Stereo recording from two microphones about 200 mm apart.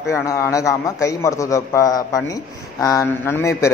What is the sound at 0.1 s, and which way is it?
A man's voice, 15° left (ahead or behind).